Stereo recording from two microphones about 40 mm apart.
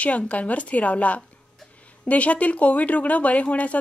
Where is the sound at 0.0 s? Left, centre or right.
Left.